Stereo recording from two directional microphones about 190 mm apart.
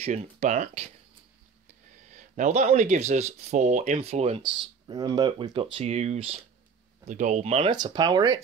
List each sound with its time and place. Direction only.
0.0 s speech: 35° right (ahead or behind)
7.7 s speech: 20° right (ahead or behind)